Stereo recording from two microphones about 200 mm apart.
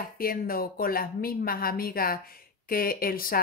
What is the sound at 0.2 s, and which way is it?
Speech, 45° left (ahead or behind).